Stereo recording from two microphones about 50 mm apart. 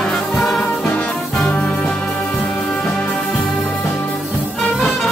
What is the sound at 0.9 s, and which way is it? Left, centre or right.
Music, left.